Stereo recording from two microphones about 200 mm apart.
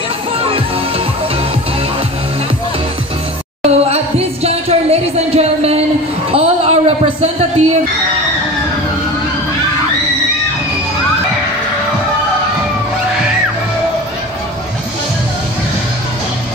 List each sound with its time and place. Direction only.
0.4 s music: 30° right (ahead or behind)
3.6 s music: 30° right (ahead or behind)